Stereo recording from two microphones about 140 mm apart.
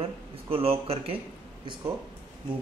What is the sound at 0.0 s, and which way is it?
A man's voice, 45° right (ahead or behind).